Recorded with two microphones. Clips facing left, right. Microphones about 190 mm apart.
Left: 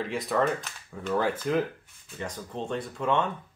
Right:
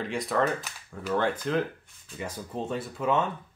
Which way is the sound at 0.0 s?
Centre (ahead or behind).